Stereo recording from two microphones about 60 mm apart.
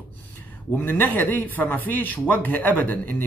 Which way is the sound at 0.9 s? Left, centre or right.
Left.